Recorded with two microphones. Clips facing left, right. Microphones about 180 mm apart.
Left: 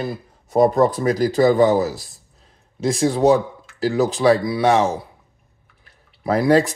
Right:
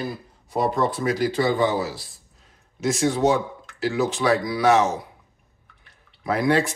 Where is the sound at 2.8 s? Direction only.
30° left (ahead or behind).